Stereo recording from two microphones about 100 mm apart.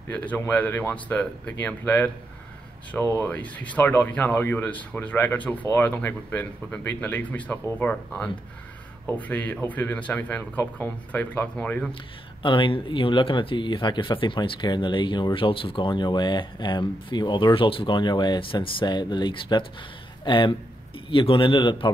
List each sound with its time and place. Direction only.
0.1 s speech: 15° left (ahead or behind)
3.3 s speech: 15° left (ahead or behind)
11.9 s a man's voice: 55° left (ahead or behind)